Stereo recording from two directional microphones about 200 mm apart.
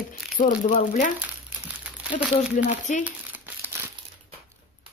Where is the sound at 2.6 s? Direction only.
40° left (ahead or behind).